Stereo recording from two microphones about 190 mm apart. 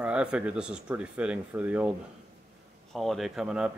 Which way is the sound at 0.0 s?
5° right (ahead or behind).